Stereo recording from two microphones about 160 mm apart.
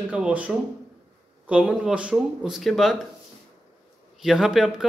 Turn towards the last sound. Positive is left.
turn(degrees=-5)  # may be behind; listen again after turning